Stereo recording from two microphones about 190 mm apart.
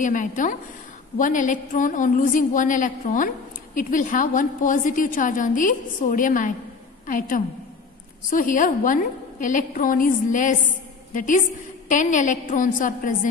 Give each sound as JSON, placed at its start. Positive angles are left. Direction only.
{"t": 0.0, "sound": "a woman's voice", "side_deg": 45}